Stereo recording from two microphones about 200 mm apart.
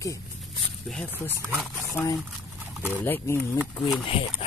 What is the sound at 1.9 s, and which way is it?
Speech, 15° left (ahead or behind).